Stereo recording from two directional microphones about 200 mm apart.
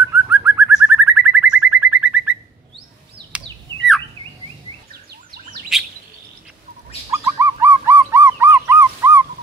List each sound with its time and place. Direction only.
0.1 s bird: 10° right (ahead or behind)
5.7 s chirp: centre (ahead or behind)
7.1 s bird: 15° right (ahead or behind)